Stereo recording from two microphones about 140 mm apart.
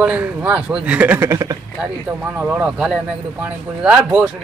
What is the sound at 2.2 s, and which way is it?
Speech, 10° right (ahead or behind).